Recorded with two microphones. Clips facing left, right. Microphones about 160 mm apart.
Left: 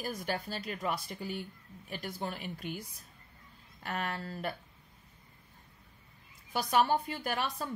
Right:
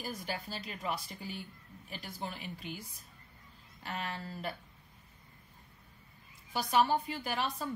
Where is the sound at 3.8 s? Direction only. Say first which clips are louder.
Left 3 dB; 50° left (ahead or behind).